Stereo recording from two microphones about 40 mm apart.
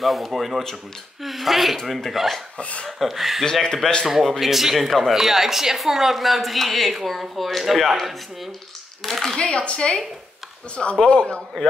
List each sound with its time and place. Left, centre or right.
0.0 s a woman's voice: centre
2.5 s speech: left
3.0 s a woman's voice: centre
3.6 s a man's voice: centre
4.1 s a woman's voice: centre
5.1 s a woman's voice: centre
9.4 s speech: left